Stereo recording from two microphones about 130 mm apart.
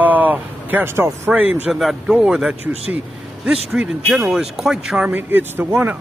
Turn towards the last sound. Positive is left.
turn(degrees=-15)  # may be behind; listen again after turning